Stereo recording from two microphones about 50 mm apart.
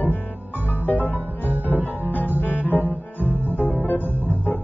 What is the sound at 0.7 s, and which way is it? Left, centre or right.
Music, left.